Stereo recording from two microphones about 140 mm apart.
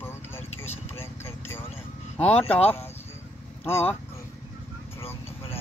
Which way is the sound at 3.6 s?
15° left (ahead or behind).